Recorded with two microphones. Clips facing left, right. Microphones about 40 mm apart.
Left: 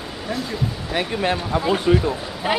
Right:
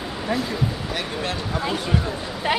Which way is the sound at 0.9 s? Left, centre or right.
Left.